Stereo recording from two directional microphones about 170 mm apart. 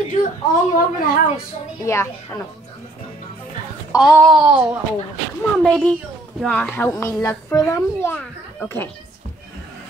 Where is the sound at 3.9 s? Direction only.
20° left (ahead or behind).